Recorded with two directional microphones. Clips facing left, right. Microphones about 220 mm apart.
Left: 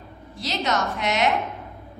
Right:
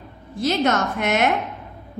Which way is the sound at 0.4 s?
50° right (ahead or behind).